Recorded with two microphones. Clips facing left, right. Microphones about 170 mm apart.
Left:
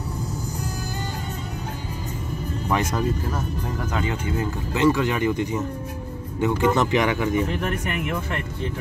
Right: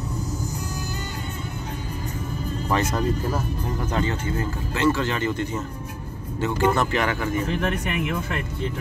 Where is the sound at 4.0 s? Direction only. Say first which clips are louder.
Even; 15° left (ahead or behind).